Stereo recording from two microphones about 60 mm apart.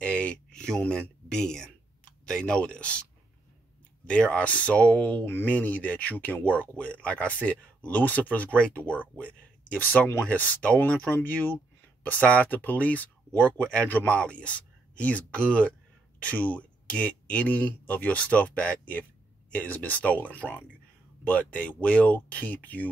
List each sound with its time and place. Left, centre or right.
0.0 s a sound: left
2.0 s speech: centre
5.2 s speech: left